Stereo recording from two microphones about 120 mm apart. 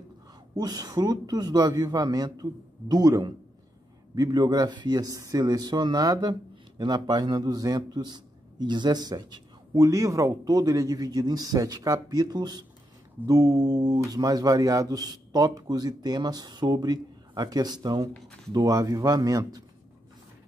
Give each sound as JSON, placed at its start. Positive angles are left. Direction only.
{"t": 0.6, "sound": "a man's voice", "side_deg": -35}